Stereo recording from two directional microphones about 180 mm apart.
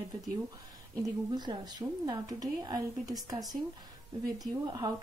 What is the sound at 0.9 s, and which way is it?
Speech, 25° right (ahead or behind).